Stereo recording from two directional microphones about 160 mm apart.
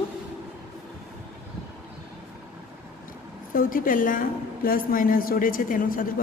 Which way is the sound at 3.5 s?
60° left (ahead or behind).